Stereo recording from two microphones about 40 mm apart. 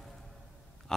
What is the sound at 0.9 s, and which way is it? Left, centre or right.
Speech, centre.